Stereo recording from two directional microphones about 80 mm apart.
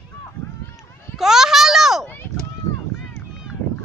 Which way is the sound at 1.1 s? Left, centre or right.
Centre.